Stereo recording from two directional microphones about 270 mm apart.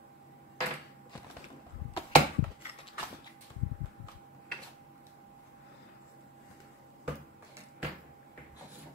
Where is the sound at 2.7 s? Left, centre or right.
Left.